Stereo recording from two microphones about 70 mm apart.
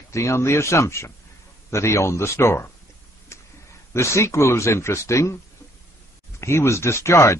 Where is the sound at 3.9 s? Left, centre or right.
Left.